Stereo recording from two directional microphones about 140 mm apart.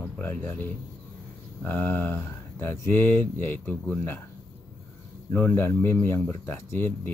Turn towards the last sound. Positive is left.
turn(degrees=15)  # may be behind; listen again after turning